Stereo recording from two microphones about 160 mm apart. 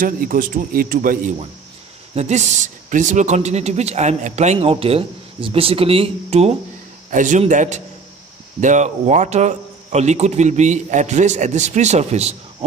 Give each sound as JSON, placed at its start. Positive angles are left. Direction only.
{"t": 0.0, "sound": "speech", "side_deg": -60}
{"t": 7.1, "sound": "speech", "side_deg": -50}